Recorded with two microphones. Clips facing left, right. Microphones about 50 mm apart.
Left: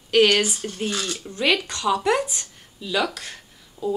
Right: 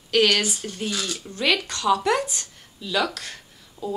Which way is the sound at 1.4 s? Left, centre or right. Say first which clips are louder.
Left 1 dB; centre.